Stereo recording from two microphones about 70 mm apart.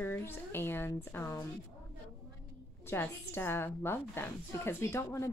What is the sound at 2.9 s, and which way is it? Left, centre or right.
A woman's voice, left.